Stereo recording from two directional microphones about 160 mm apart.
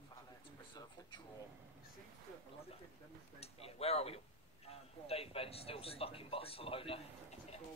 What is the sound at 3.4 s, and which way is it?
Speech, 40° left (ahead or behind).